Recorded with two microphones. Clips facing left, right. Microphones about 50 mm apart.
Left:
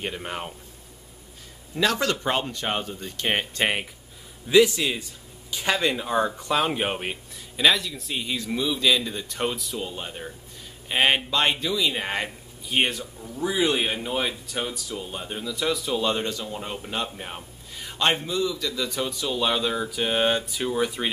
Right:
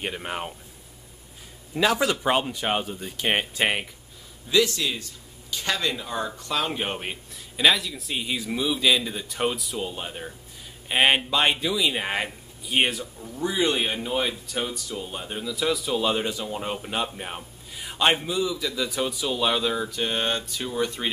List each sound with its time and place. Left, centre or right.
0.0 s speech: centre
1.8 s speech: centre
4.5 s a man's voice: centre